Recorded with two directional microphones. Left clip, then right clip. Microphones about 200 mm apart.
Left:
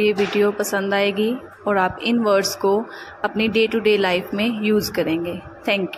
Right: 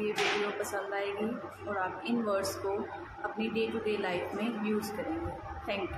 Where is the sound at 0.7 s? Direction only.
50° left (ahead or behind).